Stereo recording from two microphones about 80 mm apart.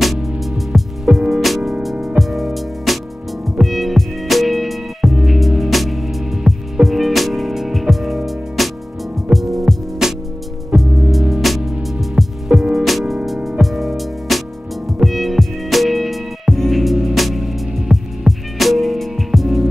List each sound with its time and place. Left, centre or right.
0.0 s music: centre